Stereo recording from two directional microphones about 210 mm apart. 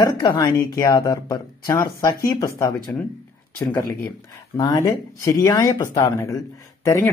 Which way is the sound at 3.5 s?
15° left (ahead or behind).